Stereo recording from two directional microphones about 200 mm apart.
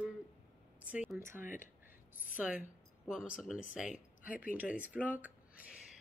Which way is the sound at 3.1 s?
Centre (ahead or behind).